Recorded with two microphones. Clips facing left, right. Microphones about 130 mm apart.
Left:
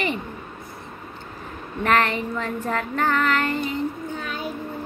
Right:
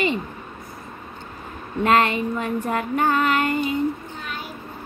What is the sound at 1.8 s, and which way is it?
A woman's voice, 15° right (ahead or behind).